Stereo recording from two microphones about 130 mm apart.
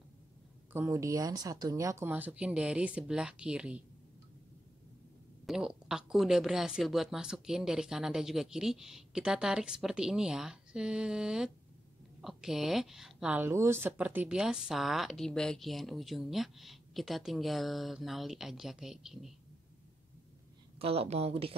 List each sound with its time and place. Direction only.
0.7 s speech: 20° right (ahead or behind)
2.0 s speech: 15° right (ahead or behind)
5.5 s speech: 5° right (ahead or behind)
20.8 s speech: 50° right (ahead or behind)